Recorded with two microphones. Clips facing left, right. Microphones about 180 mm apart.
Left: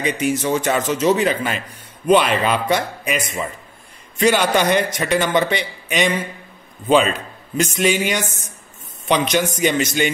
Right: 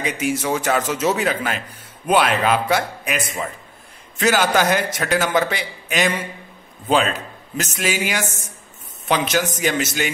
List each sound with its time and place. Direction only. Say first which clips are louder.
0.0 s a man's voice: left 2 dB; 5° right (ahead or behind)
4.4 s speech: left 1 dB; 5° right (ahead or behind)
7.5 s speech: left 5 dB; 5° right (ahead or behind)